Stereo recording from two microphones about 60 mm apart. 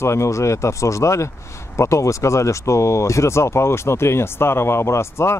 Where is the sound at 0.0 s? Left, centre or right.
Left.